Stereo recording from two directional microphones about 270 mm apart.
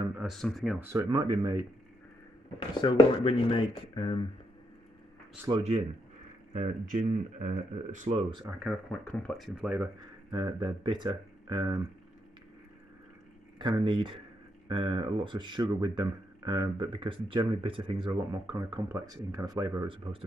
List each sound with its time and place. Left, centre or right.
0.2 s speech: centre
0.9 s speech: centre
2.7 s speech: centre
5.5 s speech: right
8.6 s speech: centre
10.3 s speech: centre
13.6 s speech: centre